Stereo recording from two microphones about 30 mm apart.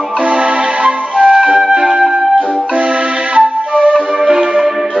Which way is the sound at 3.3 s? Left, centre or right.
Right.